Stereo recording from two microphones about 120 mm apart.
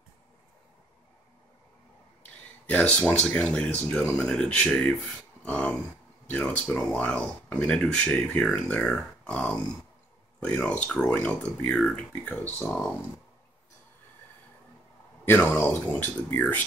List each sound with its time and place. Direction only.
2.6 s speech: 10° left (ahead or behind)
5.4 s a sound: 10° left (ahead or behind)
6.2 s speech: 10° left (ahead or behind)
15.2 s speech: 15° left (ahead or behind)